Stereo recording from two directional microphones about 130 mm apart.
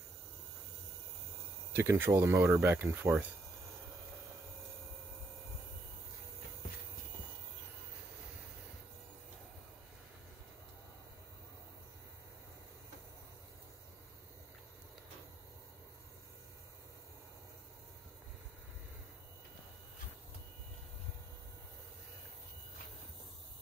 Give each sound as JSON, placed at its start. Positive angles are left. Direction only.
{"t": 1.7, "sound": "speech", "side_deg": -15}